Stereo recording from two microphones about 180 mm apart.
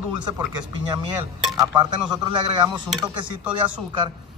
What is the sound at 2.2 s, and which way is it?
Speech, 25° right (ahead or behind).